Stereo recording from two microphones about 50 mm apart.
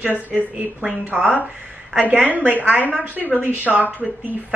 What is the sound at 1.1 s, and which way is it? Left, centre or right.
Speech, left.